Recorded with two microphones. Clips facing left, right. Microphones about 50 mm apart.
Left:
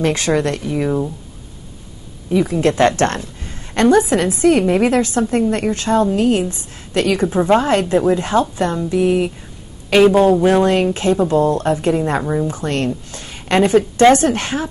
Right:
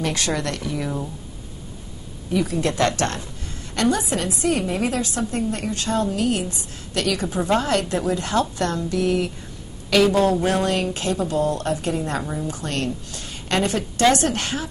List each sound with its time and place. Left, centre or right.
0.0 s speech: left
2.3 s a woman's voice: left
3.0 s a woman's voice: left